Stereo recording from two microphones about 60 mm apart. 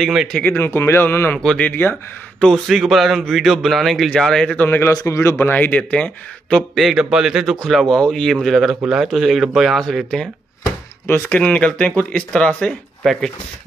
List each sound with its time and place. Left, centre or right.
0.0 s a man's voice: centre
0.4 s speech: left
2.4 s a man's voice: centre
4.6 s speech: left
5.0 s speech: left
5.4 s speech: left
6.7 s a man's voice: centre
7.0 s a man's voice: centre
7.5 s a man's voice: centre
11.2 s speech: left